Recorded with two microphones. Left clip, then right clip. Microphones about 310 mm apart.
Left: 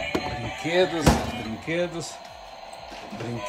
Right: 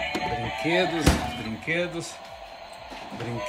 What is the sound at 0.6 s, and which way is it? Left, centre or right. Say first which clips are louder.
Speech: left 2 dB; left.